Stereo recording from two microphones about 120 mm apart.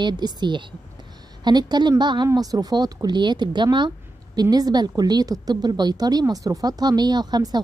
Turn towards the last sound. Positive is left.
turn(degrees=-35)  # may be behind; listen again after turning